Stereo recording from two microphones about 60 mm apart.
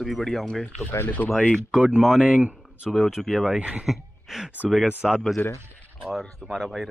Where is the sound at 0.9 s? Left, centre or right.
Left.